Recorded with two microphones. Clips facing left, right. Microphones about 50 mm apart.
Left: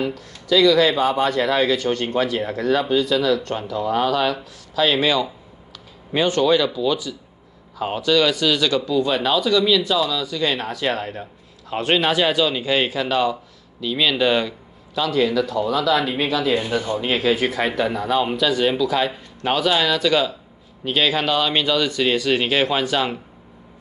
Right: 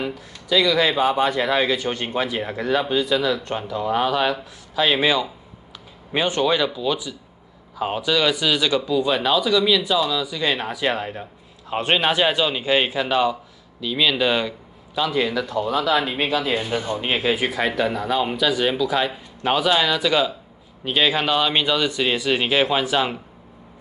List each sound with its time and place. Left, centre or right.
0.0 s speech: centre
11.7 s a man's voice: centre
13.7 s speech: centre
15.0 s speech: centre
15.4 s speech: right; by 17.6 s centre
17.6 s speech: centre